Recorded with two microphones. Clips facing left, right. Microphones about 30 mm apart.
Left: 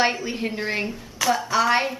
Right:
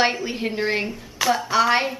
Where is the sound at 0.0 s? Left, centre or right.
Centre.